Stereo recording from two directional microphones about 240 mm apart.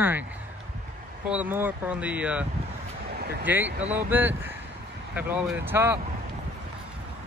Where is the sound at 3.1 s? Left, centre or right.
Right.